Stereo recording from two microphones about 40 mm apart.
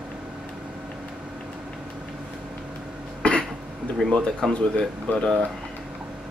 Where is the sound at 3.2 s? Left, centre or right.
Left.